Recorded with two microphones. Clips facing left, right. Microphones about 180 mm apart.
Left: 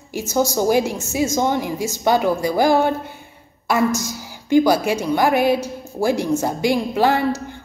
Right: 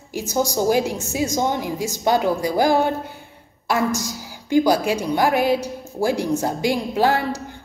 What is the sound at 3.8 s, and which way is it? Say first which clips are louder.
A woman's voice: left 2 dB; 15° right (ahead or behind).